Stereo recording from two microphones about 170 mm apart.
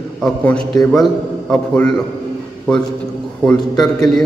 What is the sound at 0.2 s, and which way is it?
A man's voice, centre (ahead or behind).